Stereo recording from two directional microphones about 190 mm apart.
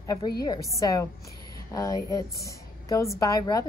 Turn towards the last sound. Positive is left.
turn(degrees=20)  # may be behind; listen again after turning